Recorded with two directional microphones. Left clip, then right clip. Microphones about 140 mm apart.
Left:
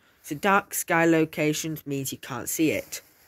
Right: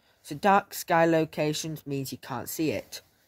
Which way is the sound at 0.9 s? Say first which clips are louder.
Left 1 dB; 50° right (ahead or behind).